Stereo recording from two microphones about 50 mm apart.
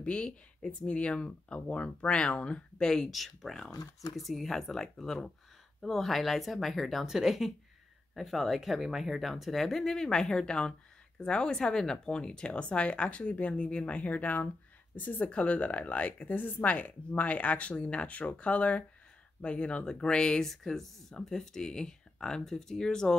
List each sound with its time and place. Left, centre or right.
0.0 s a woman's voice: centre
3.1 s a woman's voice: centre